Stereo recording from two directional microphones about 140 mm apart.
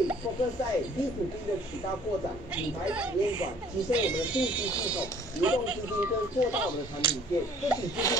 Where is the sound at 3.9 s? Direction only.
10° right (ahead or behind).